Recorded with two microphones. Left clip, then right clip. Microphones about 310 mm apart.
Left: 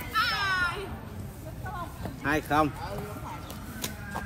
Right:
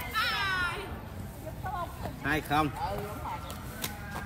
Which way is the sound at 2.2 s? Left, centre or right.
Centre.